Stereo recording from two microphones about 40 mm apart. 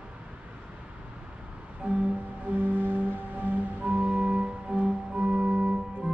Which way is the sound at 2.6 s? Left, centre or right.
Right.